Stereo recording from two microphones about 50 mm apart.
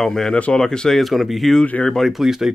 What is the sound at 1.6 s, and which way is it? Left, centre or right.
Speech, left.